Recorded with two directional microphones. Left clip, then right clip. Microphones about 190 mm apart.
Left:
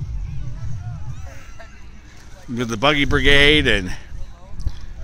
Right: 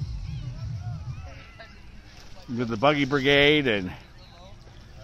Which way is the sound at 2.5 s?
10° left (ahead or behind).